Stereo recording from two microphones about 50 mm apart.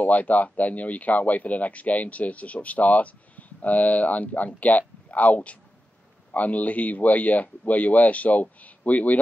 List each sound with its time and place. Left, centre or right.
0.0 s speech: left